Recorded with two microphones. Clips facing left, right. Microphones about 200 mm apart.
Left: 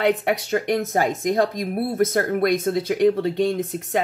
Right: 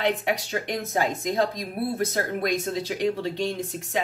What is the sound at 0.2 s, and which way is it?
Speech, 50° left (ahead or behind).